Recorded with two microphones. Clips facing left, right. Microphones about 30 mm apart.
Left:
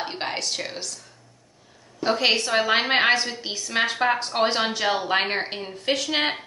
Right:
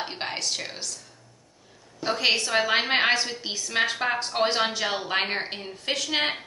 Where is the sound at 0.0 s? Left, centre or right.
Centre.